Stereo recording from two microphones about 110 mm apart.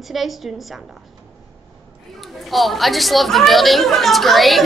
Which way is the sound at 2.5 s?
Centre (ahead or behind).